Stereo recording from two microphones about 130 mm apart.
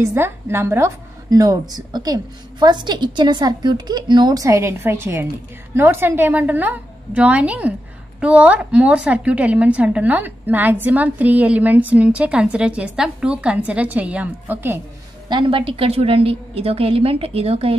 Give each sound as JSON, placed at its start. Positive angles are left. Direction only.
{"t": 0.0, "sound": "a woman's voice", "side_deg": -20}
{"t": 15.2, "sound": "a woman's voice", "side_deg": -40}